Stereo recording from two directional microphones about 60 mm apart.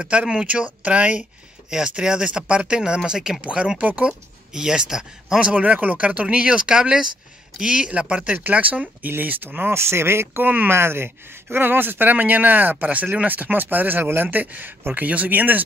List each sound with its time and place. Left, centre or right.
0.0 s speech: centre
4.6 s speech: centre
5.5 s speech: right
10.7 s speech: right